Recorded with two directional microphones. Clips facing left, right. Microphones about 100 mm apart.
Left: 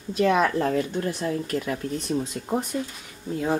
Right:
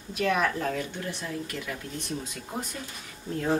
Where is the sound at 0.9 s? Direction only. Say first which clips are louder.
Left 8 dB; 45° left (ahead or behind).